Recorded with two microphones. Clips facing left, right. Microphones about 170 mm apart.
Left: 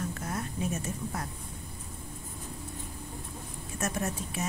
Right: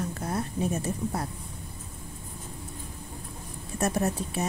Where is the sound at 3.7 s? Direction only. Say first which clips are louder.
Right 6 dB; 35° right (ahead or behind).